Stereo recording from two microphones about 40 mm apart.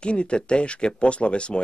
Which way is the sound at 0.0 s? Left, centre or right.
Left.